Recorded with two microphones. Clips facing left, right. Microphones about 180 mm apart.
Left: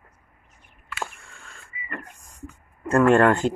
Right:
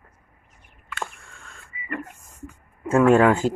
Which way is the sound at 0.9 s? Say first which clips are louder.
Even; centre (ahead or behind).